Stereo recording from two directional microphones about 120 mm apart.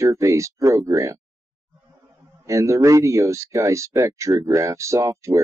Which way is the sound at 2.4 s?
25° right (ahead or behind).